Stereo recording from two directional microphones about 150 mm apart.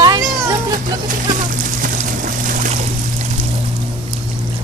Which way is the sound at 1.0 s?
60° right (ahead or behind).